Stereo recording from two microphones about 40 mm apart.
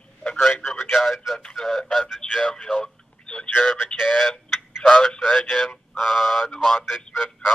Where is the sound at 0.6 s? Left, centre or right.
Left.